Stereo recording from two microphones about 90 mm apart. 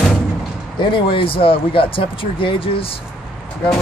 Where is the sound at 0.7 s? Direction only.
65° left (ahead or behind); by 2.9 s 90° left.